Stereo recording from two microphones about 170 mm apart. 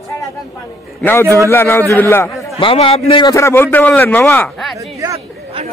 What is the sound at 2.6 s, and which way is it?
Speech, 30° left (ahead or behind).